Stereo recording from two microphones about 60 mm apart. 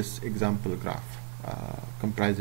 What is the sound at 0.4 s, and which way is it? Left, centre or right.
Speech, centre.